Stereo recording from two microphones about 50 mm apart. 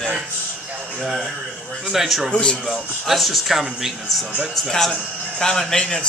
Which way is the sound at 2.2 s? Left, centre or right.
Centre.